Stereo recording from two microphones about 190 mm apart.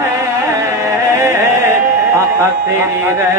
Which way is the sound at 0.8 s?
15° right (ahead or behind).